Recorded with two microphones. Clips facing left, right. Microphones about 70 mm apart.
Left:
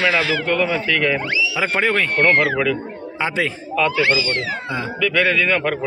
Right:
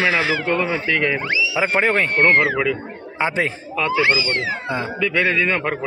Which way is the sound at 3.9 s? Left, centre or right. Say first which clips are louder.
Even; centre.